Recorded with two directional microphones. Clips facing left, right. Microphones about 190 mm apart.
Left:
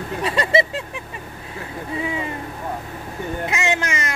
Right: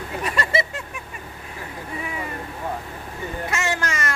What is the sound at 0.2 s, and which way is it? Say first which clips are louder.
Vehicle: left 5 dB; 20° left (ahead or behind).